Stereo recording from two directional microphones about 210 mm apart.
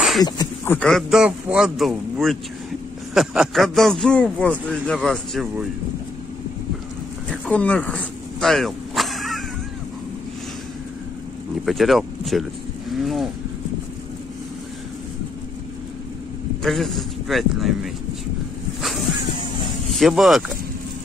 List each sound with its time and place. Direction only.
0.2 s speech: 20° left (ahead or behind)
0.7 s a man's voice: centre (ahead or behind)
7.4 s a sound: 5° left (ahead or behind)
11.6 s a man's voice: centre (ahead or behind)
12.9 s vehicle: centre (ahead or behind)
16.6 s a man's voice: centre (ahead or behind)
18.8 s vehicle: centre (ahead or behind)
19.9 s a man's voice: centre (ahead or behind)